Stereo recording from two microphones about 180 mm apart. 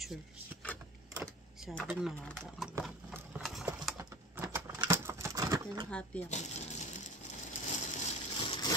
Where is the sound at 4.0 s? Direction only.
15° right (ahead or behind).